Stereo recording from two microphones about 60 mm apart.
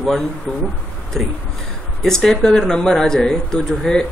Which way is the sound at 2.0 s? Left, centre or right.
Centre.